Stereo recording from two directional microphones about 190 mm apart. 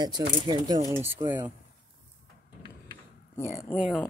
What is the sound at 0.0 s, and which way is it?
Speech, 20° right (ahead or behind).